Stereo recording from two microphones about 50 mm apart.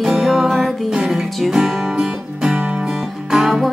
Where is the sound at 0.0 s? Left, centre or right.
Centre.